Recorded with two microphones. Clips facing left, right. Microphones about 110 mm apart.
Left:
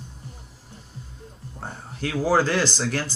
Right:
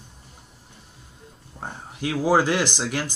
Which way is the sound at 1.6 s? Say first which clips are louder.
Right 1 dB; 15° right (ahead or behind).